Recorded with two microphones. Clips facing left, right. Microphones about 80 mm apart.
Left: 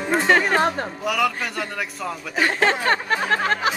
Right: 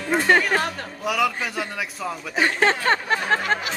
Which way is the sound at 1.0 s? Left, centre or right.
Centre.